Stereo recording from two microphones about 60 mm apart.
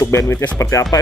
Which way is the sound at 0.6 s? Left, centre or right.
Left.